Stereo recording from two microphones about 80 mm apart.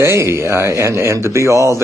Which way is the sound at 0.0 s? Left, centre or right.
Right.